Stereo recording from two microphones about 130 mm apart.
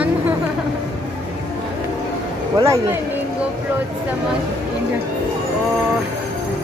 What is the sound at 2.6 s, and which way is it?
Speech, 25° right (ahead or behind).